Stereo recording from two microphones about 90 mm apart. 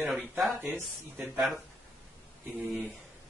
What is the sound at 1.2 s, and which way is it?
Speech, 5° right (ahead or behind).